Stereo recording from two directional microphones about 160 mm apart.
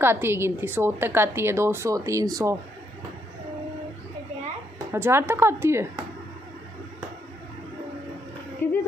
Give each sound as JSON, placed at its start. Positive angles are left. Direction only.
{"t": 0.0, "sound": "a woman's voice", "side_deg": -15}
{"t": 4.9, "sound": "a woman's voice", "side_deg": -15}
{"t": 8.6, "sound": "a sound", "side_deg": 15}